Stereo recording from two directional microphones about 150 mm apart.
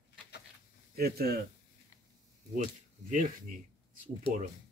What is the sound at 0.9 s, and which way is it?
Speech, 90° right.